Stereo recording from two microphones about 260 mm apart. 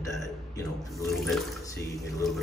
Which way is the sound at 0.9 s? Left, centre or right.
Centre.